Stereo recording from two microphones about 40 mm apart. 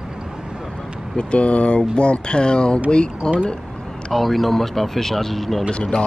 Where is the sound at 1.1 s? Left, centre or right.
Left.